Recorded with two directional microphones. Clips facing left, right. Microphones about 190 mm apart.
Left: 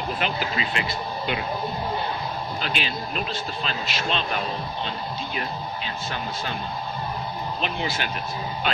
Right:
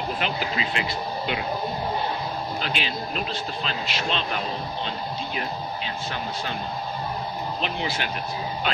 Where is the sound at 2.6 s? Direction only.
45° left (ahead or behind).